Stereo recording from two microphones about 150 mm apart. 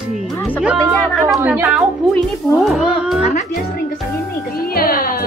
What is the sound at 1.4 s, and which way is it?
A woman's voice, 10° right (ahead or behind).